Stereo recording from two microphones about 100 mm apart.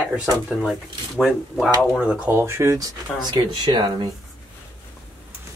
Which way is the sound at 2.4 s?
30° right (ahead or behind).